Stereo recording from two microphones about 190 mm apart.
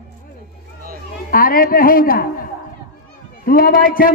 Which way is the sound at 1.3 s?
50° left (ahead or behind).